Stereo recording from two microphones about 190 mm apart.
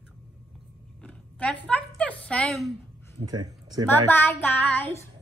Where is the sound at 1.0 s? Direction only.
5° left (ahead or behind).